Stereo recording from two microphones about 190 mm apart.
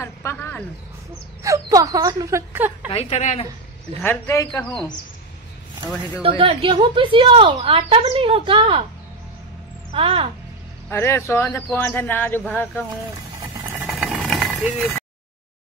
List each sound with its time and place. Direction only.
0.0 s a sound: 15° left (ahead or behind)
1.4 s speech: 15° right (ahead or behind)
2.9 s a woman's voice: 35° left (ahead or behind)
4.0 s speech: 10° left (ahead or behind)
6.2 s a woman's voice: 30° right (ahead or behind)
9.9 s a woman's voice: 30° right (ahead or behind)
10.9 s speech: 15° left (ahead or behind)
13.7 s vehicle: centre (ahead or behind)